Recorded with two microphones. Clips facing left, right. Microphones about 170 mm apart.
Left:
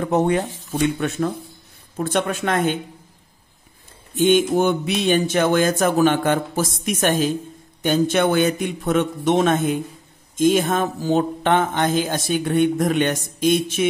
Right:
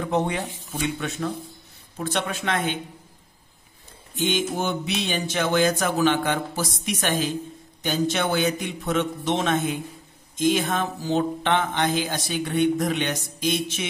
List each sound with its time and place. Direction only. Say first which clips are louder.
0.0 s speech: left 6 dB; 50° left (ahead or behind)
4.2 s speech: left 9 dB; 55° left (ahead or behind)